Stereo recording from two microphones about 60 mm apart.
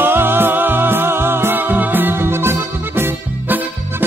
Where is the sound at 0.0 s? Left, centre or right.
Right.